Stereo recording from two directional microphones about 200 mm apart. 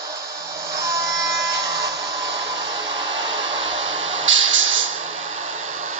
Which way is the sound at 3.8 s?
70° right (ahead or behind).